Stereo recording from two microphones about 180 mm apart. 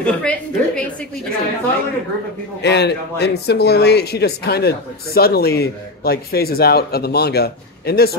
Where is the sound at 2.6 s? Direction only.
65° left (ahead or behind).